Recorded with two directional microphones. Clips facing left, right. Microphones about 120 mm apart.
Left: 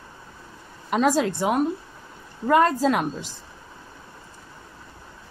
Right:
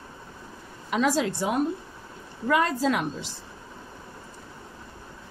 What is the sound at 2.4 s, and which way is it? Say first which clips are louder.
Speech: left 5 dB; 45° left (ahead or behind).